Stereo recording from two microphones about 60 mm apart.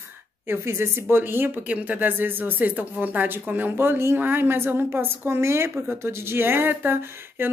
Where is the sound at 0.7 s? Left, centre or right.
Right.